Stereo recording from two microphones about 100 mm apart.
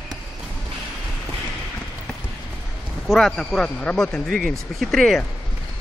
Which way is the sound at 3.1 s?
5° left (ahead or behind).